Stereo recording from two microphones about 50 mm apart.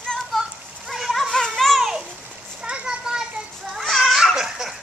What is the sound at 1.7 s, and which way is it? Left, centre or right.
Babbling, centre.